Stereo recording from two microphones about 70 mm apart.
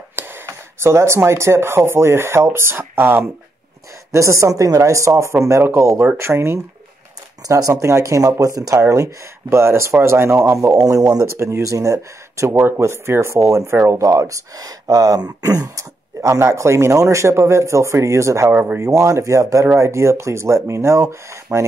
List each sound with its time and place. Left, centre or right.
0.1 s a sound: right
0.5 s speech: right
4.1 s speech: right
7.4 s speech: right
11.3 s speech: right
12.5 s speech: right
13.7 s speech: right
14.0 s speech: right
15.7 s speech: right
18.5 s speech: right
18.8 s speech: right